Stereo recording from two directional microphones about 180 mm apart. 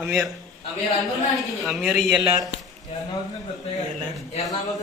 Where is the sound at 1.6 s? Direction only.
Centre (ahead or behind).